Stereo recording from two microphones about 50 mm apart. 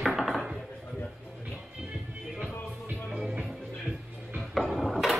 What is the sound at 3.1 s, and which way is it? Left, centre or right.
Music, centre.